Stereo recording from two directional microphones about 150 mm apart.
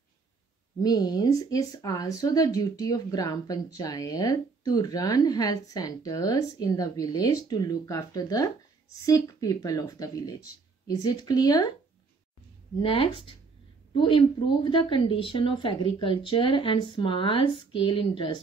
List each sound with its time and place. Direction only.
0.8 s speech: 25° left (ahead or behind)
12.8 s a woman's voice: 35° left (ahead or behind)